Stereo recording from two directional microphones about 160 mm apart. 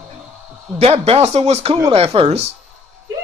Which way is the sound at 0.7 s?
40° right (ahead or behind).